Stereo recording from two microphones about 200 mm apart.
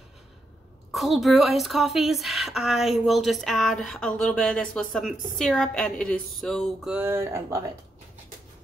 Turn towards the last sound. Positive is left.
turn(degrees=-15)  # may be behind; listen again after turning